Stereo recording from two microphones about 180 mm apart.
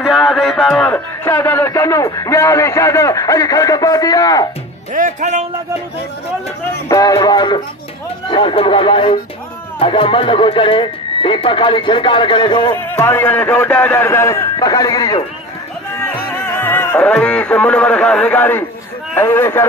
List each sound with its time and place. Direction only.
0.0 s a sound: centre (ahead or behind)
1.2 s a man's voice: 15° left (ahead or behind)
4.9 s speech: 45° right (ahead or behind)
6.9 s speech: 20° left (ahead or behind)
12.7 s a man's voice: 15° left (ahead or behind)